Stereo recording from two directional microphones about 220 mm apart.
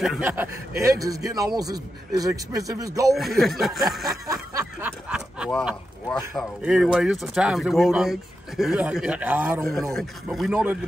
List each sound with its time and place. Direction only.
0.0 s speech: 5° right (ahead or behind)
3.2 s speech: centre (ahead or behind)
4.3 s a sound: 10° right (ahead or behind)
6.3 s speech: centre (ahead or behind)